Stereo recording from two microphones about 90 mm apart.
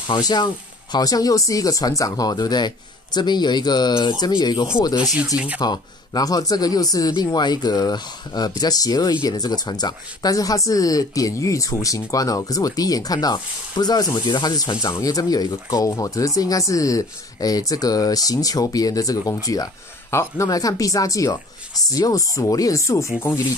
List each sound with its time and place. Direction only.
0.0 s speech: 55° left (ahead or behind)
5.3 s speech: 15° right (ahead or behind)
5.6 s speech: 50° left (ahead or behind)
20.1 s speech: 30° left (ahead or behind)
20.4 s speech: 40° left (ahead or behind)